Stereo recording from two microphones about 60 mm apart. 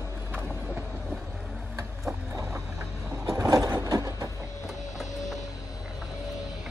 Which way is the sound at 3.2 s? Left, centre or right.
Right.